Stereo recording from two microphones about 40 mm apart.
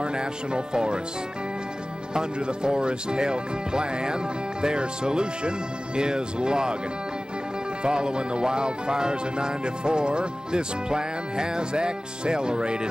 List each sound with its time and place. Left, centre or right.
0.0 s music: right
2.1 s music: centre
7.8 s music: right